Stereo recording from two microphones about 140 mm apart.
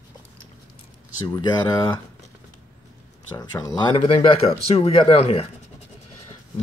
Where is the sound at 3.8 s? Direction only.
40° left (ahead or behind).